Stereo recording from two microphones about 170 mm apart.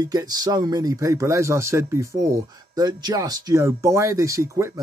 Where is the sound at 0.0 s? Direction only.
20° right (ahead or behind).